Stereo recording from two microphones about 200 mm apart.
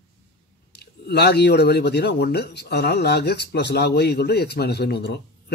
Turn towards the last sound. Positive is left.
turn(degrees=55)  # may be behind; listen again after turning